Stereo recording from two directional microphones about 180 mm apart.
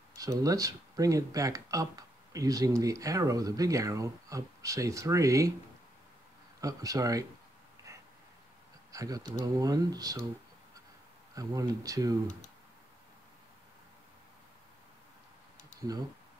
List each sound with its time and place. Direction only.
0.1 s speech: 20° right (ahead or behind)
6.6 s speech: 20° right (ahead or behind)
8.9 s speech: 20° right (ahead or behind)
11.3 s speech: 20° right (ahead or behind)